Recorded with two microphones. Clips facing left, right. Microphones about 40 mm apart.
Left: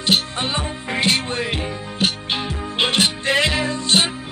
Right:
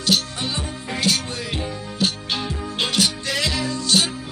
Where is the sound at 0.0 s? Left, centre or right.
Left.